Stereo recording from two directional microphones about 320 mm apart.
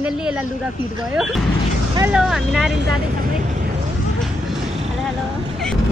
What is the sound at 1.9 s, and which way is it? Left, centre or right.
Speech, centre.